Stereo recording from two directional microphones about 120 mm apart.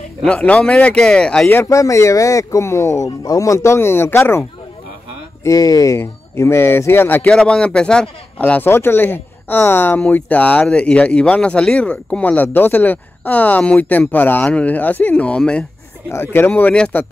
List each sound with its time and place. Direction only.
0.2 s speech: 10° left (ahead or behind)
1.5 s speech: 25° left (ahead or behind)
5.4 s speech: 30° left (ahead or behind); by 15.6 s 10° left (ahead or behind)
16.1 s speech: 20° left (ahead or behind)